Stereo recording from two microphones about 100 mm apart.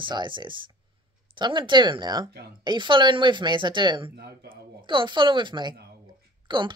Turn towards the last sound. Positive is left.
turn(degrees=-50)  # may be behind; listen again after turning